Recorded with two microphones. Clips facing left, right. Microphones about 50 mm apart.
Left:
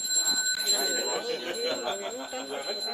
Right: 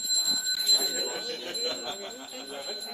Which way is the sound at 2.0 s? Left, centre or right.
Left.